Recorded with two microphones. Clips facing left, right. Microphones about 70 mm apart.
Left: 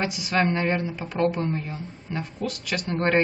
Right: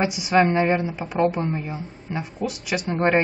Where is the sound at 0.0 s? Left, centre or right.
Centre.